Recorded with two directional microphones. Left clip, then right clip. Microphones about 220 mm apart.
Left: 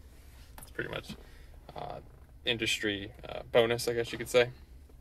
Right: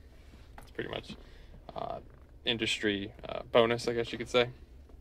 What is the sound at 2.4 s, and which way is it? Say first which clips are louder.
Speech: even; 10° right (ahead or behind).